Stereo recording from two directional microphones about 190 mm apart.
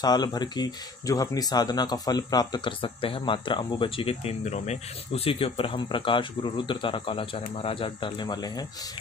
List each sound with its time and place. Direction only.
0.0 s speech: 20° left (ahead or behind)